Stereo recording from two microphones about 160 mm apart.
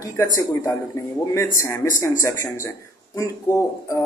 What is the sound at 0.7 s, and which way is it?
Speech, 20° left (ahead or behind).